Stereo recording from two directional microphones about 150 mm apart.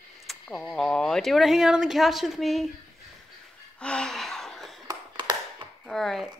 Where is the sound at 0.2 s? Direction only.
Centre (ahead or behind).